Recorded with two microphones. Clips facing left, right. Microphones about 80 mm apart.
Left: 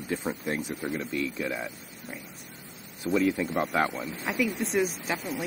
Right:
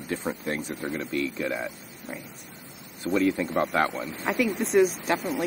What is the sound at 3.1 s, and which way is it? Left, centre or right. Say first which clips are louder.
Speech: right 1 dB; centre.